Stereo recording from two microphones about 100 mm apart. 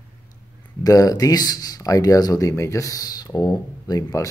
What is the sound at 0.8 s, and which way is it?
Speech, 35° left (ahead or behind).